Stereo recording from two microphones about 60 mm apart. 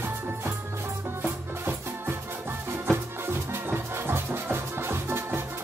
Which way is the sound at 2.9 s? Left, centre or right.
Right.